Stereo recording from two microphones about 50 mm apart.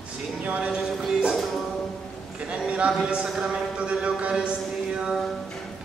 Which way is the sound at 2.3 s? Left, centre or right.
Right.